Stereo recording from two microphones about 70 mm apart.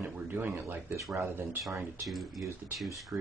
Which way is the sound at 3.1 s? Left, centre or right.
Right.